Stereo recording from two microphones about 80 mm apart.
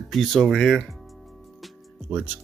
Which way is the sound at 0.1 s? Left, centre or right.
Centre.